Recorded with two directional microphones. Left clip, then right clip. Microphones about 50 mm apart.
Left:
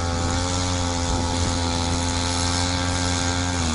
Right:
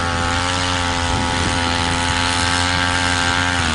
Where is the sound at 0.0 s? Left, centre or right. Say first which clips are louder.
Right 7 dB; right.